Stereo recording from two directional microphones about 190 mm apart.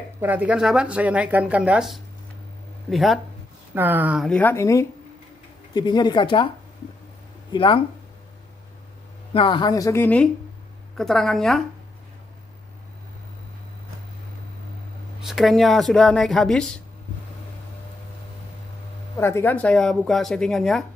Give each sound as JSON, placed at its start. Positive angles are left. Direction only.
{"t": 0.2, "sound": "speech", "side_deg": -10}
{"t": 4.4, "sound": "a woman's voice", "side_deg": 10}
{"t": 7.5, "sound": "speech", "side_deg": 25}
{"t": 9.3, "sound": "a woman's voice", "side_deg": 25}
{"t": 15.2, "sound": "speech", "side_deg": 0}
{"t": 19.1, "sound": "speech", "side_deg": 15}